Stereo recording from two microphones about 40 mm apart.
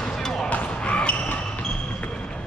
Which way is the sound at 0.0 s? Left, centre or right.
Centre.